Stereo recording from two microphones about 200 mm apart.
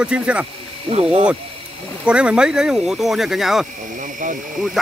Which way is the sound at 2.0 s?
5° right (ahead or behind).